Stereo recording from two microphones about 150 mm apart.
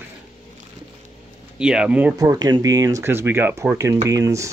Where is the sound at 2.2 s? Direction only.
25° right (ahead or behind).